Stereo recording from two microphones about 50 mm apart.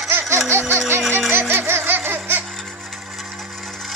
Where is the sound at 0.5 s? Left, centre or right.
Right.